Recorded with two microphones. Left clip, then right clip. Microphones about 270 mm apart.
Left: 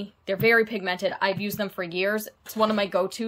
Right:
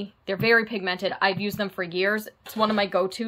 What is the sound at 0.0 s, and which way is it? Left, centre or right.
Speech, centre.